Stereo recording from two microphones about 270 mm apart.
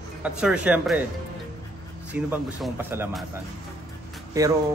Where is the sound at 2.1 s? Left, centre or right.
Centre.